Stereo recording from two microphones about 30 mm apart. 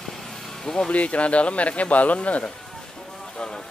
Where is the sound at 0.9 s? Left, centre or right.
Left.